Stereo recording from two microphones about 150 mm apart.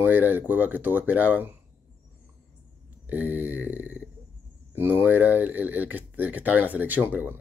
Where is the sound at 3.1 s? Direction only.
10° right (ahead or behind).